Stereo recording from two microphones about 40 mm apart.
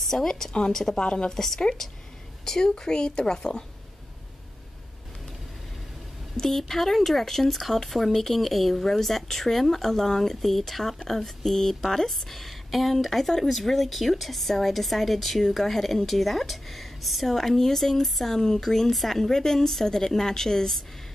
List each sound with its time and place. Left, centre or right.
0.0 s a woman's voice: centre
1.4 s speech: centre
6.3 s a woman's voice: centre